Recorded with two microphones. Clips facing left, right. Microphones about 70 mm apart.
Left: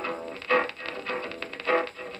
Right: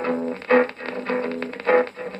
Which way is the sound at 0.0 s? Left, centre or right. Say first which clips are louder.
Right 9 dB; right.